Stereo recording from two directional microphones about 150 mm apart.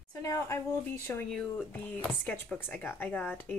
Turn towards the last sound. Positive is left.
turn(degrees=10)  # may be behind; listen again after turning